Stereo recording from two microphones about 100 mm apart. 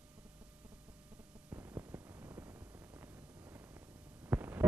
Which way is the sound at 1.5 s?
25° right (ahead or behind).